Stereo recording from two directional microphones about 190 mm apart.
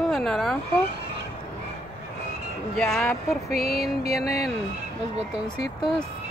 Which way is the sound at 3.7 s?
55° left (ahead or behind).